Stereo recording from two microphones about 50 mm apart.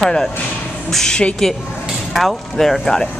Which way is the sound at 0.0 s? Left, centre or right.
Centre.